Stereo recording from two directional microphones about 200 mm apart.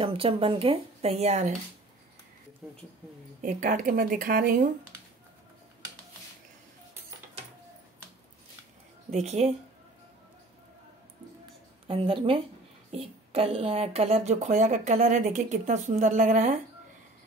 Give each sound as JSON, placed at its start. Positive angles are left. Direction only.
{"t": 0.0, "sound": "speech", "side_deg": -30}
{"t": 3.3, "sound": "speech", "side_deg": -40}
{"t": 9.1, "sound": "speech", "side_deg": -35}
{"t": 11.9, "sound": "speech", "side_deg": -25}